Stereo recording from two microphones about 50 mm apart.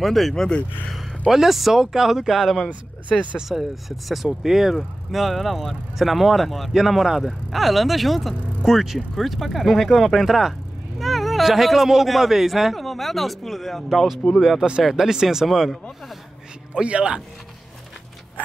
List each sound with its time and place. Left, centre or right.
0.0 s speech: centre
16.7 s speech: right